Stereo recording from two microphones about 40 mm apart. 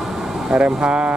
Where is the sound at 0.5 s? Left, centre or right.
Right.